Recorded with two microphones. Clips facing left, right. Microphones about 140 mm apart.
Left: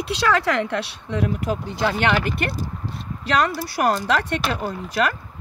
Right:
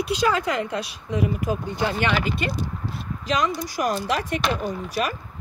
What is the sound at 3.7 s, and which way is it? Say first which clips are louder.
Speech: left 6 dB; 70° left (ahead or behind).